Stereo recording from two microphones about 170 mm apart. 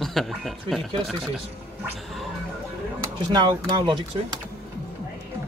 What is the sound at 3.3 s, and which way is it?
Speech, 25° right (ahead or behind).